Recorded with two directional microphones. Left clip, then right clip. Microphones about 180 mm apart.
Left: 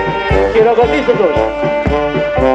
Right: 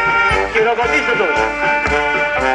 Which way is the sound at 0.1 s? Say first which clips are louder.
Left 1 dB; 25° left (ahead or behind).